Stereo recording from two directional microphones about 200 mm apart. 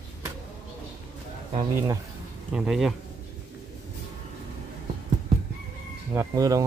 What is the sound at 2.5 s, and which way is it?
Speech, centre (ahead or behind).